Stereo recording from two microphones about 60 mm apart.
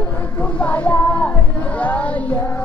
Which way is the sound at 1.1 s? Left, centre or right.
Left.